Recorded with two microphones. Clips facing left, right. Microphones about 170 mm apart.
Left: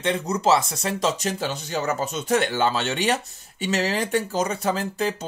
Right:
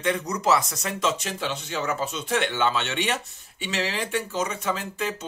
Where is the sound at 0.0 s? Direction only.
30° left (ahead or behind).